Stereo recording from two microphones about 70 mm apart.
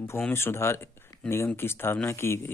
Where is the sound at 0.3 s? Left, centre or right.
Left.